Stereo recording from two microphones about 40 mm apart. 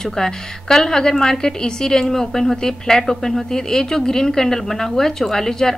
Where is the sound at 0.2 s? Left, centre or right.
Centre.